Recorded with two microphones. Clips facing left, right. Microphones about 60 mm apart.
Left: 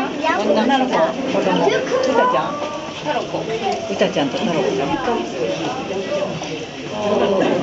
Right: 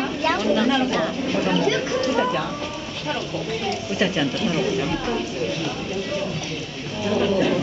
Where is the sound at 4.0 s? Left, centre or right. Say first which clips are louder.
Left 4 dB; centre.